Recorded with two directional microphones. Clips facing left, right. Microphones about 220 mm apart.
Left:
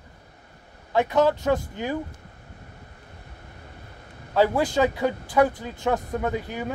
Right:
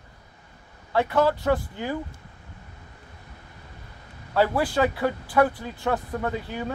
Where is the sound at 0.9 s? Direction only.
15° left (ahead or behind).